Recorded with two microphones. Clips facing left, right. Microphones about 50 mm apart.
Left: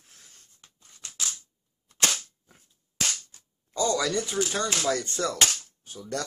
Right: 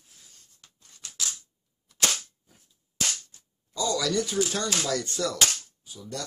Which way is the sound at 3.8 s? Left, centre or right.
Left.